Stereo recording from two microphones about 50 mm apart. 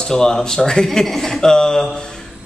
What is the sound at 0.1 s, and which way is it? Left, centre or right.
Speech, centre.